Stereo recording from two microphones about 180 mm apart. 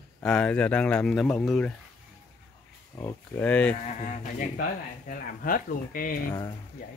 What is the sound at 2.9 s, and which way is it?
Speech, 10° left (ahead or behind).